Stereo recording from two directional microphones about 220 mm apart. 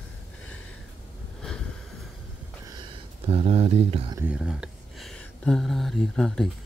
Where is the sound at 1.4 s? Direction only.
5° left (ahead or behind).